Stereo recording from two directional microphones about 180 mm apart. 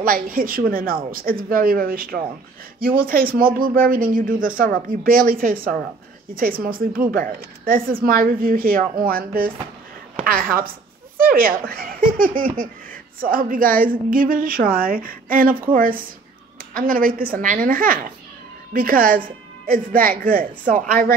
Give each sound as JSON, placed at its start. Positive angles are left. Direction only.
{"t": 0.0, "sound": "a woman's voice", "side_deg": -50}